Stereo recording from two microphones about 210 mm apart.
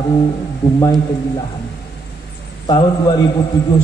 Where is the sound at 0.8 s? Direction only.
20° left (ahead or behind).